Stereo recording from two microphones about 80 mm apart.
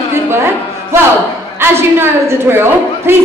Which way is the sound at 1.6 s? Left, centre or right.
Right.